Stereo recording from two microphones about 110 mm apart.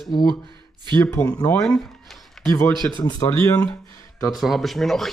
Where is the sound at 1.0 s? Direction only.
25° left (ahead or behind).